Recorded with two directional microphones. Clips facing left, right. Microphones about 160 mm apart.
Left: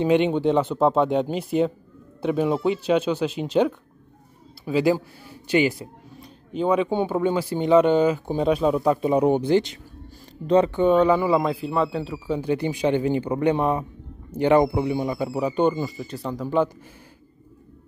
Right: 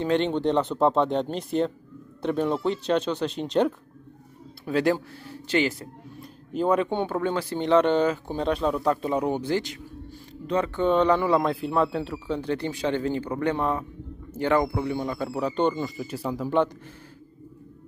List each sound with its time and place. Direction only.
0.0 s speech: 10° left (ahead or behind)
6.5 s speech: centre (ahead or behind); by 10.7 s 30° left (ahead or behind)
10.7 s speech: 10° left (ahead or behind)